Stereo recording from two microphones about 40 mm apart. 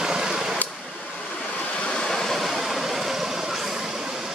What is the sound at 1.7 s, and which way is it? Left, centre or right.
Waves, left.